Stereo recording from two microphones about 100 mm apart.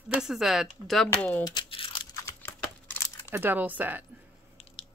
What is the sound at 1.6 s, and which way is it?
Crunch, 60° left (ahead or behind).